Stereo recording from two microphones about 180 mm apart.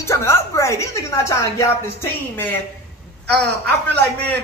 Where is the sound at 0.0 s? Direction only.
15° left (ahead or behind).